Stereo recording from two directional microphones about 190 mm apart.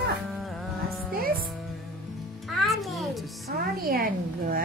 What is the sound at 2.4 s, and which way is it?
Music, centre (ahead or behind).